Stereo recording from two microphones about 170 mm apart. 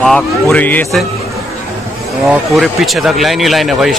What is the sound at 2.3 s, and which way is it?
Speech, centre (ahead or behind).